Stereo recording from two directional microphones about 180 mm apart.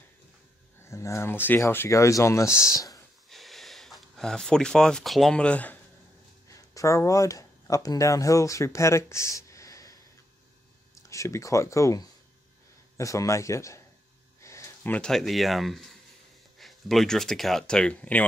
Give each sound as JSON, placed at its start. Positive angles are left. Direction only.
{"t": 0.8, "sound": "speech", "side_deg": 15}
{"t": 3.3, "sound": "speech", "side_deg": 0}
{"t": 6.5, "sound": "speech", "side_deg": 20}
{"t": 11.0, "sound": "speech", "side_deg": 15}